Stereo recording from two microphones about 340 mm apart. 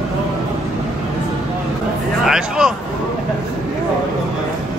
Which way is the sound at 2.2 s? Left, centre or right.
Centre.